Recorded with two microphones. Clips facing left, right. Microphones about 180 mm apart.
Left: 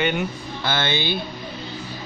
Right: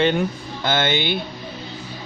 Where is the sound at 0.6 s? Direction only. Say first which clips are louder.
Right 3 dB; 20° right (ahead or behind).